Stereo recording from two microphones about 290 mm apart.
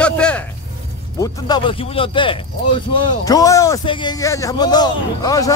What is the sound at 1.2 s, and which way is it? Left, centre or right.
A man's voice, centre.